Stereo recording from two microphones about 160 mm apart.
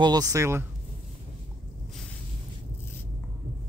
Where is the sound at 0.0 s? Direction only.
25° right (ahead or behind).